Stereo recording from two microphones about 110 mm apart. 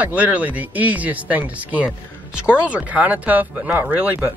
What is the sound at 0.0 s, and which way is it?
Speech, 15° right (ahead or behind).